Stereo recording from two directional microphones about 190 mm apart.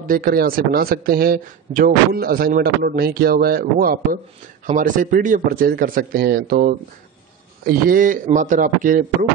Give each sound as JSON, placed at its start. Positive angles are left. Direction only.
{"t": 0.0, "sound": "a man's voice", "side_deg": -50}